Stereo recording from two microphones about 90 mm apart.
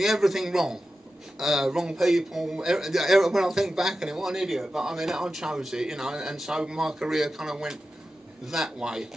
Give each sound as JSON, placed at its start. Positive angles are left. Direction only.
{"t": 0.0, "sound": "speech", "side_deg": -5}